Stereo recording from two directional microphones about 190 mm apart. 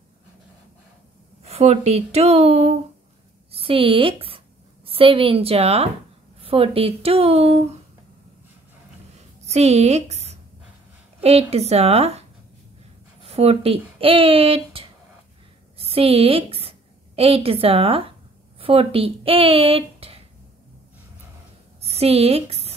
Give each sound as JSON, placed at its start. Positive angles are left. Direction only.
{"t": 1.4, "sound": "speech", "side_deg": -35}
{"t": 9.5, "sound": "a woman's voice", "side_deg": -35}
{"t": 13.2, "sound": "a woman's voice", "side_deg": -30}
{"t": 21.8, "sound": "a sound", "side_deg": -30}